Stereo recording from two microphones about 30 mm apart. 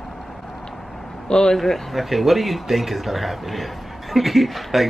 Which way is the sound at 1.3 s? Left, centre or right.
Left.